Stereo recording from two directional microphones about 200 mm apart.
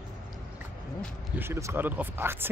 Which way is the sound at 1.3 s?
15° right (ahead or behind).